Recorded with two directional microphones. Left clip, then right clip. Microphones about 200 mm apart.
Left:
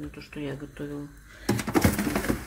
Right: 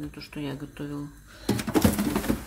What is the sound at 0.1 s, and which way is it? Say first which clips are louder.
Speech: even; 5° right (ahead or behind).